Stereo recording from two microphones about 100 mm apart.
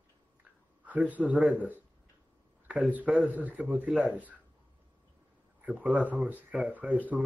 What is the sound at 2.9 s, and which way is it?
Speech, 10° right (ahead or behind).